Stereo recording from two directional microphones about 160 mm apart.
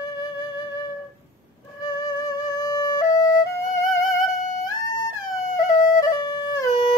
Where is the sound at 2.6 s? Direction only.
25° left (ahead or behind).